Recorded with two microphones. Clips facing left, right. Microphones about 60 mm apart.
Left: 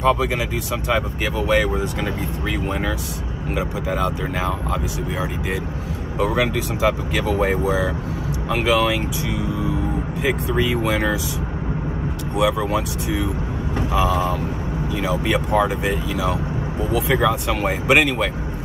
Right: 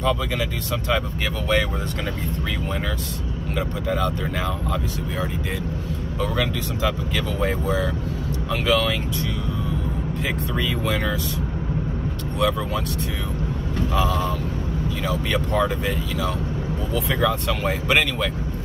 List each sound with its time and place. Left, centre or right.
0.2 s speech: centre
3.5 s speech: centre
6.1 s speech: centre
10.2 s speech: centre
12.4 s speech: centre